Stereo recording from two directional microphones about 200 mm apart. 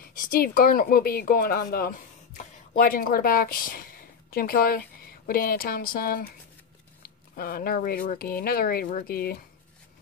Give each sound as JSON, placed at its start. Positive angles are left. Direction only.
{"t": 0.1, "sound": "a woman's voice", "side_deg": 45}
{"t": 7.3, "sound": "speech", "side_deg": 45}